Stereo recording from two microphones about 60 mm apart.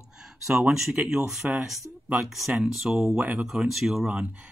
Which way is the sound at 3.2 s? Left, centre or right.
Right.